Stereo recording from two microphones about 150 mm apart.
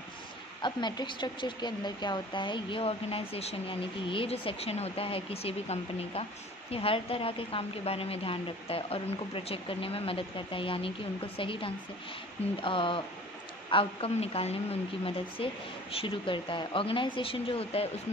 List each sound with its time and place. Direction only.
0.6 s speech: 30° left (ahead or behind)